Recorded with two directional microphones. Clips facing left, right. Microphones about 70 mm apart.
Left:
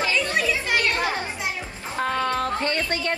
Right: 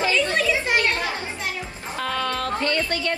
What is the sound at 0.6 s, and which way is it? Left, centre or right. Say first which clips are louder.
Music: right 2 dB; right.